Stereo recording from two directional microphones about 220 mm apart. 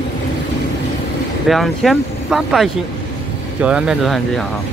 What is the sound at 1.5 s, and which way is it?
Speech, centre (ahead or behind).